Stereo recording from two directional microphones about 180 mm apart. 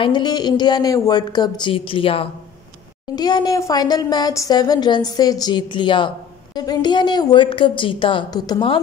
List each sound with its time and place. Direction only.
0.0 s speech: 25° left (ahead or behind)